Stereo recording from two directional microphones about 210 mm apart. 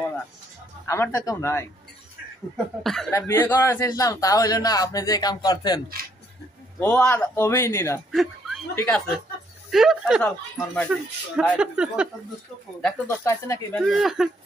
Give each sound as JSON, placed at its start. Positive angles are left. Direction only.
{"t": 0.8, "sound": "a man's voice", "side_deg": 10}
{"t": 2.5, "sound": "speech", "side_deg": 0}
{"t": 3.1, "sound": "a man's voice", "side_deg": 10}
{"t": 6.8, "sound": "a man's voice", "side_deg": 5}
{"t": 8.1, "sound": "chuckle", "side_deg": 0}
{"t": 8.7, "sound": "a man's voice", "side_deg": 10}
{"t": 11.5, "sound": "speech", "side_deg": -5}
{"t": 12.8, "sound": "a man's voice", "side_deg": 15}
{"t": 13.7, "sound": "speech", "side_deg": 0}